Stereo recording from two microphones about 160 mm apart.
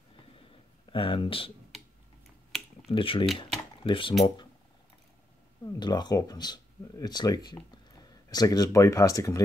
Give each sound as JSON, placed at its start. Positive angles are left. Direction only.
{"t": 0.9, "sound": "speech", "side_deg": 35}
{"t": 2.9, "sound": "speech", "side_deg": 35}
{"t": 5.7, "sound": "speech", "side_deg": 25}